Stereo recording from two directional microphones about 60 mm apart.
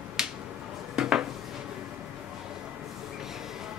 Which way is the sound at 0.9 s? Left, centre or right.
Centre.